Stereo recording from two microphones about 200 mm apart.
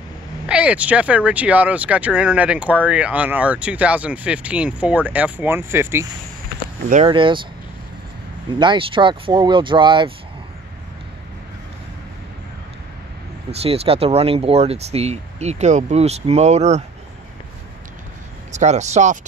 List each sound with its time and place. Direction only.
0.5 s speech: 5° right (ahead or behind)
7.1 s speech: 25° right (ahead or behind)
8.5 s speech: 25° right (ahead or behind)
13.5 s speech: 30° right (ahead or behind)
18.5 s speech: 35° right (ahead or behind)